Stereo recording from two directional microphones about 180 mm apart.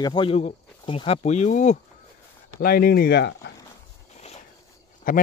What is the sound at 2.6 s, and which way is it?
Speech, 60° left (ahead or behind).